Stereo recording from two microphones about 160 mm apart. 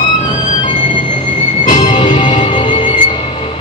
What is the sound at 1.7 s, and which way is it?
Music, 30° left (ahead or behind).